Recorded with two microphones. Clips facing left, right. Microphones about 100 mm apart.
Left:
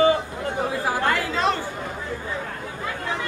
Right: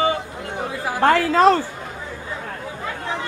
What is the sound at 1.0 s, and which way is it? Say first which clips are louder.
Chatter: right 11 dB; 40° right (ahead or behind).